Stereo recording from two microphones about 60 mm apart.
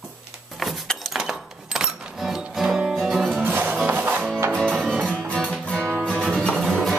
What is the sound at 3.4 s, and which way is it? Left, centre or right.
Music, right.